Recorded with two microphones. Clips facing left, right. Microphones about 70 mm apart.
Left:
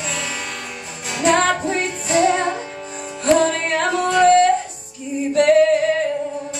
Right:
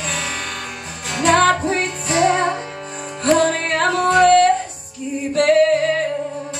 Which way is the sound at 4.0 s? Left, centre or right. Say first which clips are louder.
Right 1 dB; right.